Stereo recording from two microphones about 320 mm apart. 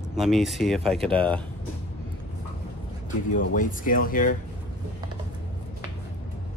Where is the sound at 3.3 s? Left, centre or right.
Left.